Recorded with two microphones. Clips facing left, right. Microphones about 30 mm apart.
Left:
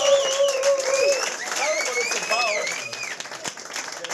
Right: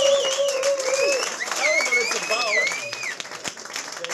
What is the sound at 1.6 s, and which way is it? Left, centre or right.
Applause, right.